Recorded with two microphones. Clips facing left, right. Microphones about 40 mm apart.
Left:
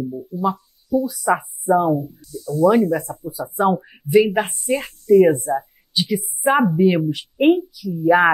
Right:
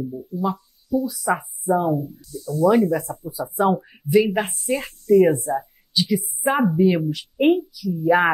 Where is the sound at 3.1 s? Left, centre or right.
Left.